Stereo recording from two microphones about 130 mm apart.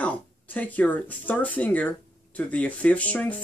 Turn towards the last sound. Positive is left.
turn(degrees=10)  # may be behind; listen again after turning